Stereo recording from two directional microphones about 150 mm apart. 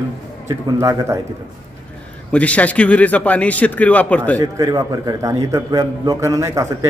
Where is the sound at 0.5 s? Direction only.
20° right (ahead or behind).